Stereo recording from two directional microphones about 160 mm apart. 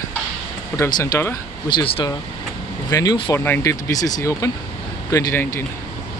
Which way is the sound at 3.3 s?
15° left (ahead or behind).